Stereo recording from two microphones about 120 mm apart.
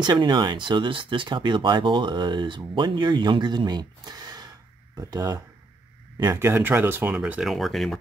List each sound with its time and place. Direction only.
0.0 s speech: 40° right (ahead or behind); by 7.2 s 20° right (ahead or behind)
7.2 s speech: 5° right (ahead or behind)